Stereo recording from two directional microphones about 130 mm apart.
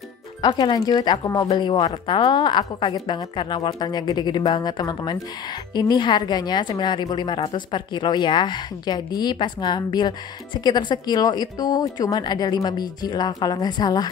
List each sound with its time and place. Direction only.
0.4 s speech: 35° left (ahead or behind)